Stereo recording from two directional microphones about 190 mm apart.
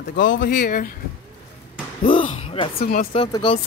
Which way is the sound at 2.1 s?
30° left (ahead or behind).